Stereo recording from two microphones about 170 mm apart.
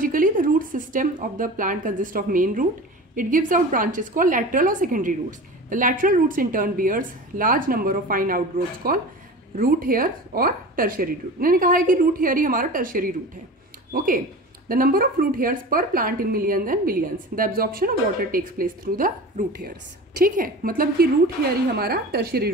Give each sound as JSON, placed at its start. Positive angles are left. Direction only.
{"t": 0.0, "sound": "a woman's voice", "side_deg": -55}